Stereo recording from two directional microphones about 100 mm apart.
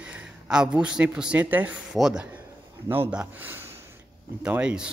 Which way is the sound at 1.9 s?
5° right (ahead or behind).